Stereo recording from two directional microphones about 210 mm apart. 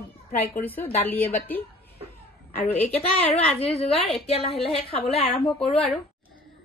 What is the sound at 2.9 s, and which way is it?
A woman's voice, 30° left (ahead or behind).